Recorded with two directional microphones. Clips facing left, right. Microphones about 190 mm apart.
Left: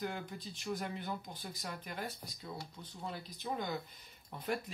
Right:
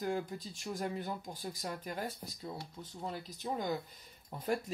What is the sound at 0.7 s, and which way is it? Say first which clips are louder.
Speech: right 3 dB; 40° right (ahead or behind).